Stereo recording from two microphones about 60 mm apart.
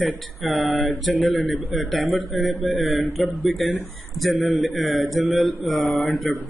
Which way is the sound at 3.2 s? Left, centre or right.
Centre.